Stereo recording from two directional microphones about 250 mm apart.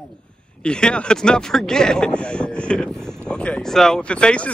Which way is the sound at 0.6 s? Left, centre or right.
Centre.